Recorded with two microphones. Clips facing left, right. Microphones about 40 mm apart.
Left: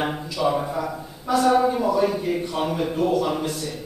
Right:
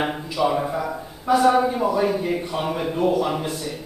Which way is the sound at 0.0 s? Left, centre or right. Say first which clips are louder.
Right 1 dB; centre.